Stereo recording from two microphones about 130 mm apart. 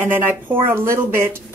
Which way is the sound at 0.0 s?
15° right (ahead or behind).